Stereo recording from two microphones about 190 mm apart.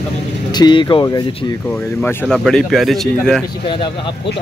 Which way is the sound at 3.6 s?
25° left (ahead or behind).